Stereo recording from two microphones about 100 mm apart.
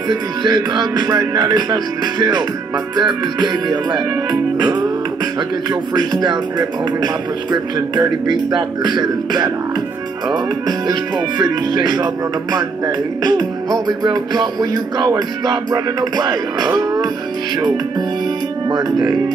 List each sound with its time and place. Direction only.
0.1 s music: 40° right (ahead or behind)
6.2 s music: 45° right (ahead or behind)
10.9 s music: 40° right (ahead or behind)
18.7 s speech: 40° right (ahead or behind)